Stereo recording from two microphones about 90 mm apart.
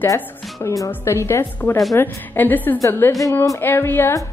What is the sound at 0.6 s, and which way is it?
Speech, 40° left (ahead or behind).